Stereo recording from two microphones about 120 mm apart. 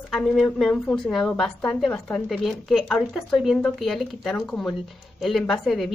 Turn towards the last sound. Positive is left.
turn(degrees=0)  # may be behind; listen again after turning